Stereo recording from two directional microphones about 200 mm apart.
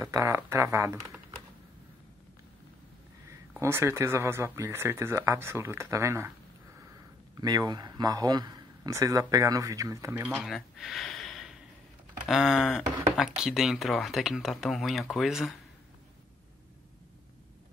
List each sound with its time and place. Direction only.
0.0 s speech: 15° right (ahead or behind)
3.3 s speech: 10° right (ahead or behind)
7.3 s speech: 20° right (ahead or behind); by 15.5 s centre (ahead or behind)